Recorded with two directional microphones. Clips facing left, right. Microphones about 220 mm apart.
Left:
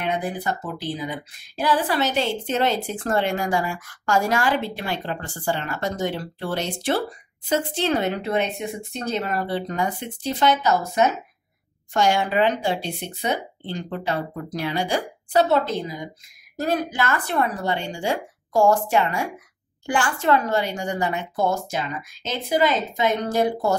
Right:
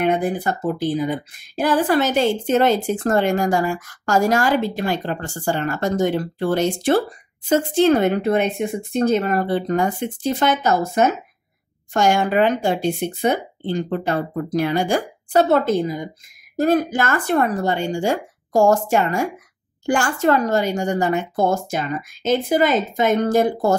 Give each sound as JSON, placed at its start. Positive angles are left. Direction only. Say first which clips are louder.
{"t": 0.0, "sound": "speech", "louder": "right 6 dB", "side_deg": -50}